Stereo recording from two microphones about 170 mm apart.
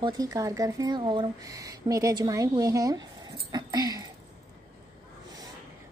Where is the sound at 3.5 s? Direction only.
25° right (ahead or behind).